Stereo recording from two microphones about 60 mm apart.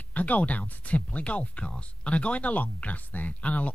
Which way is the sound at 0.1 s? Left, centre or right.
Left.